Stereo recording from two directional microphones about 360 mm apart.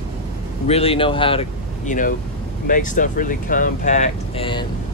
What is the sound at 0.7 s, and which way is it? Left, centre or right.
Speech, centre.